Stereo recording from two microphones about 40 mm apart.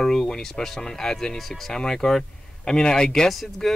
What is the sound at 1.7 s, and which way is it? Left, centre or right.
Speech, centre.